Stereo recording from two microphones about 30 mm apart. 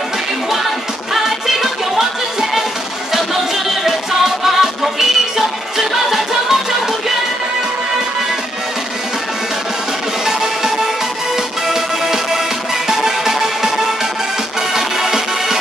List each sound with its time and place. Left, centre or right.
1.1 s music: centre
3.8 s music: centre
10.2 s music: centre
11.7 s music: centre